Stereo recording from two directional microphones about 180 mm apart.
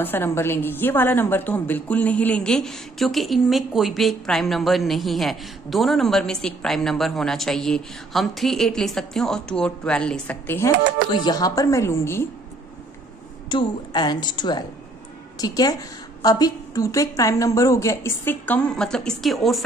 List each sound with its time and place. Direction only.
0.0 s a woman's voice: 10° left (ahead or behind)
13.5 s a woman's voice: 25° left (ahead or behind); by 19.6 s centre (ahead or behind)